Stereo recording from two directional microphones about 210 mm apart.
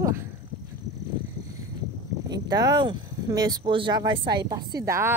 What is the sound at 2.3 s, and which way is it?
A woman's voice, 20° right (ahead or behind).